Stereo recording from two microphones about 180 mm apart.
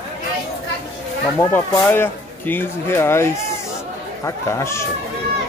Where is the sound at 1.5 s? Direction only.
10° left (ahead or behind).